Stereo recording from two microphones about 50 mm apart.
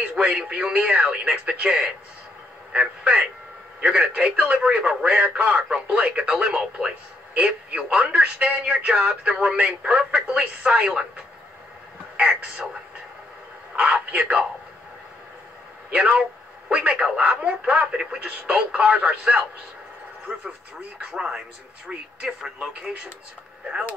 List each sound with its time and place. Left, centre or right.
0.0 s speech: centre
12.2 s speech: right
13.7 s speech: right
16.2 s speech: right
21.0 s speech: centre